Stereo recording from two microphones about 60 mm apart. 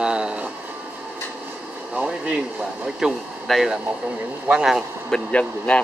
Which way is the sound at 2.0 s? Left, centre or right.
Centre.